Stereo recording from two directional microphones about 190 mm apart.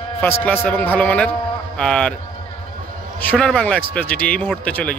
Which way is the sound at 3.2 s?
5° left (ahead or behind).